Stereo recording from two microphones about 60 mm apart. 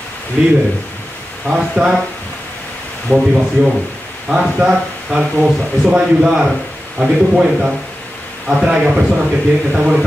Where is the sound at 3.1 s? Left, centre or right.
Left.